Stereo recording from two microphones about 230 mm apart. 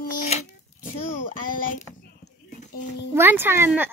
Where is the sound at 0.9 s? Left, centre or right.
Left.